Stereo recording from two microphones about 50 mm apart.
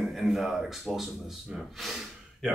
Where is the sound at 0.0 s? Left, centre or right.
Centre.